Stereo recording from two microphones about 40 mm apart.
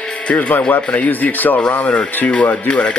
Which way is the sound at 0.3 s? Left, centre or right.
Left.